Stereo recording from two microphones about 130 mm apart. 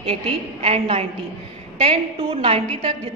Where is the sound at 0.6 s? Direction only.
50° right (ahead or behind).